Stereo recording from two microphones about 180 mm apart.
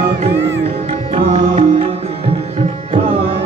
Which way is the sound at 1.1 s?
35° right (ahead or behind).